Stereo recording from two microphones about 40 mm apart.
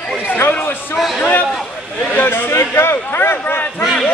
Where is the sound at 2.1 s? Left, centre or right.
Left.